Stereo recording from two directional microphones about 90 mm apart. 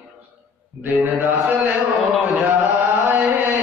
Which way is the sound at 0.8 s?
25° right (ahead or behind).